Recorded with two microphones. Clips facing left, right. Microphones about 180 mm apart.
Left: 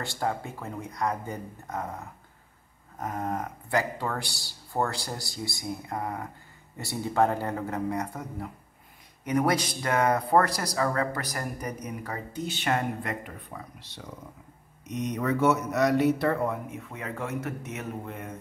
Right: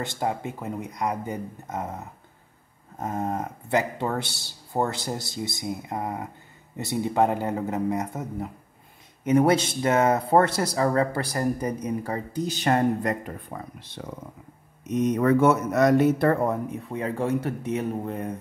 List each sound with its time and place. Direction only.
0.0 s speech: 20° right (ahead or behind); by 18.3 s 35° right (ahead or behind)